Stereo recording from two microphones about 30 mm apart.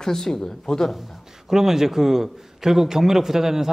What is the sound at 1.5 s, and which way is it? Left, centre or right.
A man's voice, centre.